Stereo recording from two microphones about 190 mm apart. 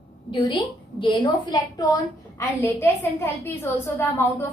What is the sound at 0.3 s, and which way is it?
A woman's voice, 25° left (ahead or behind).